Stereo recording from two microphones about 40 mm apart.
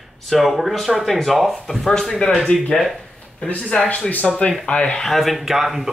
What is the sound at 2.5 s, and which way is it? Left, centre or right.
Speech, left.